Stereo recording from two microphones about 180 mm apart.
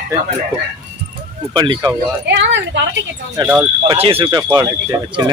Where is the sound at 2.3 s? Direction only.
85° right.